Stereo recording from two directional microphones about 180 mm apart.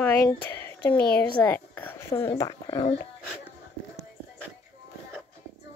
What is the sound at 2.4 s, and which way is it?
Speech, 25° left (ahead or behind).